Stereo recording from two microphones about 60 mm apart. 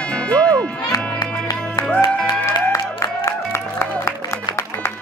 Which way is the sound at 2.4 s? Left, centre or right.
Left.